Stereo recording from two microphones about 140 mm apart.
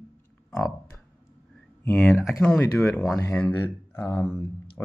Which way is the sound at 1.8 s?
15° left (ahead or behind).